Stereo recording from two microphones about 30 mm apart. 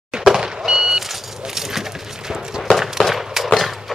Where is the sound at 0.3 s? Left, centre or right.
Centre.